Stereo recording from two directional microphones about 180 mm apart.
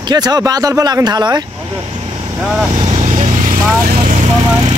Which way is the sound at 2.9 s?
45° right (ahead or behind).